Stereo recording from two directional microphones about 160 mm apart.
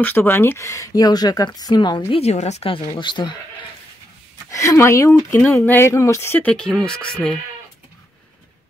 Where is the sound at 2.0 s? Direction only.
40° left (ahead or behind).